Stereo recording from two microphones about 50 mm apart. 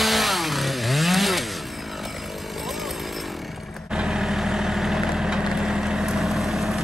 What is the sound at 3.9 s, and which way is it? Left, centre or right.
Vehicle, centre.